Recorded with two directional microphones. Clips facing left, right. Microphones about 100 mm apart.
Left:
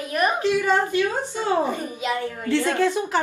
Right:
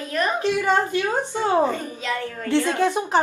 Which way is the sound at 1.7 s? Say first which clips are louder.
Even; 15° left (ahead or behind).